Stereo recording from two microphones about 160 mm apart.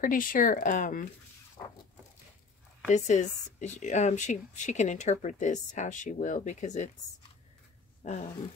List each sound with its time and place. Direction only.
0.0 s speech: 55° left (ahead or behind)
2.9 s speech: 50° left (ahead or behind)
8.0 s a sound: 50° left (ahead or behind)